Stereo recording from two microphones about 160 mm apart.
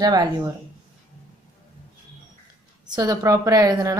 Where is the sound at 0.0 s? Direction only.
25° right (ahead or behind).